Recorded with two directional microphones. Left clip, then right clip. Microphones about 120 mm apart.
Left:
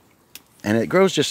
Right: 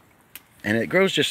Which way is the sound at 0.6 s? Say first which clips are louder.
Left 3 dB; 55° left (ahead or behind).